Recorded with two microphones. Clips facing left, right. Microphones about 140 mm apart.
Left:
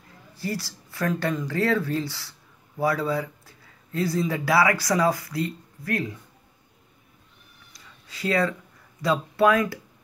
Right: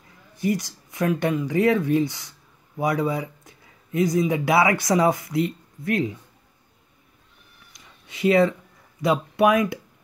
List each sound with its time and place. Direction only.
0.4 s speech: 20° right (ahead or behind)
7.7 s a sound: 20° right (ahead or behind)
9.0 s speech: 20° right (ahead or behind)